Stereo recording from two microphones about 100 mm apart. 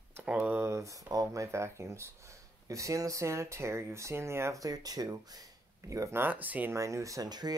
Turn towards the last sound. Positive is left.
turn(degrees=-45)  # may be behind; listen again after turning